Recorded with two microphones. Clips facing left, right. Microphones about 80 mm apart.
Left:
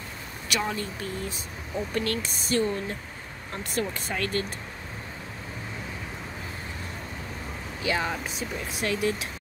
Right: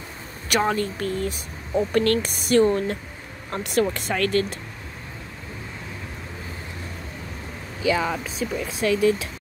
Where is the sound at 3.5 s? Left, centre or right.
Right.